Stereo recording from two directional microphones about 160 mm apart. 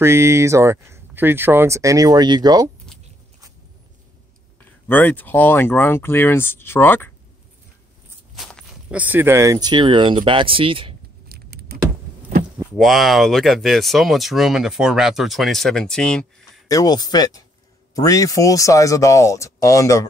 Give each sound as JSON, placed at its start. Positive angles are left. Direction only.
{"t": 0.0, "sound": "speech", "side_deg": -15}
{"t": 4.8, "sound": "speech", "side_deg": 10}
{"t": 8.4, "sound": "walk", "side_deg": 5}
{"t": 8.9, "sound": "speech", "side_deg": -10}
{"t": 11.2, "sound": "vehicle", "side_deg": -85}
{"t": 12.7, "sound": "speech", "side_deg": 0}
{"t": 16.6, "sound": "speech", "side_deg": 25}